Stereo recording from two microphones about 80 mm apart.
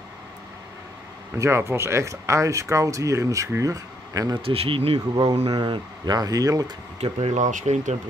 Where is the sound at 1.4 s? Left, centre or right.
Right.